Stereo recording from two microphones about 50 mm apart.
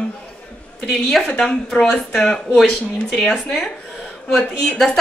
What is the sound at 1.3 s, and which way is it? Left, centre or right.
Speech, centre.